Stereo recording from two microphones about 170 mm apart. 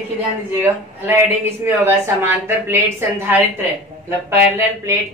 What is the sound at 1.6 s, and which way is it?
Speech, 15° right (ahead or behind).